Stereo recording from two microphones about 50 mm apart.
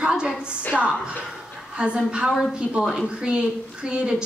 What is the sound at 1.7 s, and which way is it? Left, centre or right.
A woman's voice, centre.